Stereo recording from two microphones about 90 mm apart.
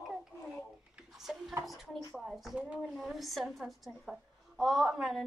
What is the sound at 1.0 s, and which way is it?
A woman's voice, 5° right (ahead or behind).